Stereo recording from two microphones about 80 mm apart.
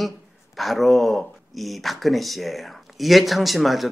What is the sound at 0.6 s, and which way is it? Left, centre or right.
Speech, centre.